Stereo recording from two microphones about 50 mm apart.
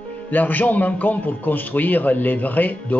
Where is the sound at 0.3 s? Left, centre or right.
Left.